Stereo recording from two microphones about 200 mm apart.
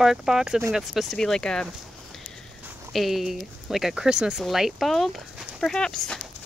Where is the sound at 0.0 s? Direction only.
Centre (ahead or behind).